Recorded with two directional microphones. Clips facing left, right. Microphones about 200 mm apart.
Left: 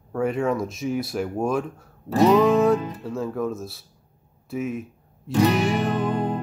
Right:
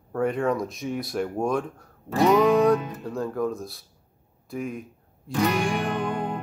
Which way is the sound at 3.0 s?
Centre (ahead or behind).